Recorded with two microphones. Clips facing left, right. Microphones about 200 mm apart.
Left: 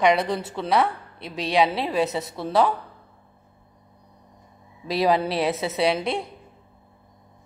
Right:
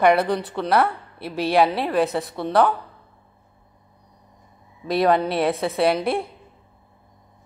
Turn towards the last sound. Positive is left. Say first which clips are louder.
# right 3 dB
turn(degrees=0)  # may be behind; listen again after turning